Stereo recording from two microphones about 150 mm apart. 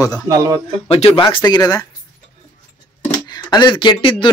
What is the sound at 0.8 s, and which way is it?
Speech, 40° left (ahead or behind).